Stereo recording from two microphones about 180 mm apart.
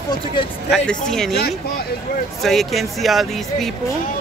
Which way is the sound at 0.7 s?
5° left (ahead or behind).